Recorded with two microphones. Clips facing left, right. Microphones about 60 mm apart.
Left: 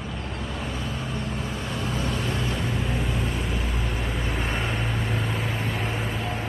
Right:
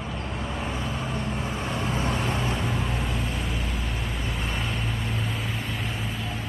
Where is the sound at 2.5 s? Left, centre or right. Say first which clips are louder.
Left 1 dB; centre.